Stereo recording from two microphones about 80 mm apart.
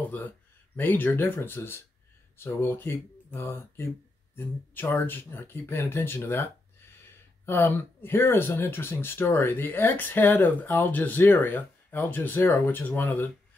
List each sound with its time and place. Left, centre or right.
0.7 s speech: left